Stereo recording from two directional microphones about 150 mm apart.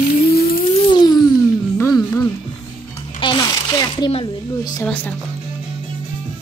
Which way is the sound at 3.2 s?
30° left (ahead or behind).